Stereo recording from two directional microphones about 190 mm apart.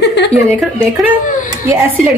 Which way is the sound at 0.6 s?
Centre (ahead or behind).